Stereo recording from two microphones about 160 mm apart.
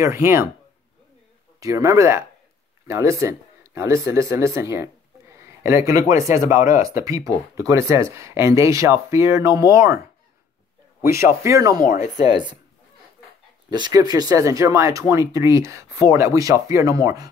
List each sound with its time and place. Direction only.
0.0 s speech: 15° right (ahead or behind)
1.6 s speech: 20° right (ahead or behind)
6.4 s speech: 55° left (ahead or behind)
7.1 s speech: 20° right (ahead or behind)
11.1 s speech: 20° right (ahead or behind)
11.8 s speech: 55° left (ahead or behind)
12.2 s speech: 30° right (ahead or behind)
13.7 s speech: 25° right (ahead or behind)